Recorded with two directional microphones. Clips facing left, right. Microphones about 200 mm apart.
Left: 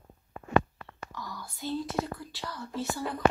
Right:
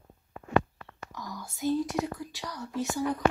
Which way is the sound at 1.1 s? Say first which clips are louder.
Right 2 dB; 15° right (ahead or behind).